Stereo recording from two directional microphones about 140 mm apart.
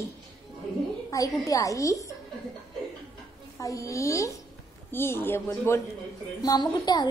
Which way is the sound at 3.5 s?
20° left (ahead or behind).